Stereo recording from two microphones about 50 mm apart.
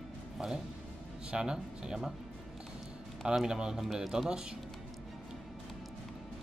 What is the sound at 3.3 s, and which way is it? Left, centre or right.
Speech, centre.